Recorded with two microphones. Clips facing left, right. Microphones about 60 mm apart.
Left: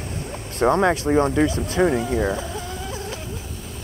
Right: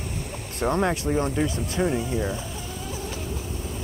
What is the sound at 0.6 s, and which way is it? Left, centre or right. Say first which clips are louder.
Speech: left 6 dB; left.